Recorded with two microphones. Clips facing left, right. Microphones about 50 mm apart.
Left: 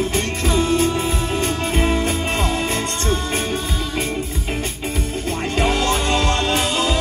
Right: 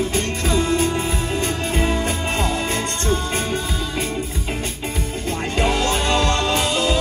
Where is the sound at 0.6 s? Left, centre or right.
Right.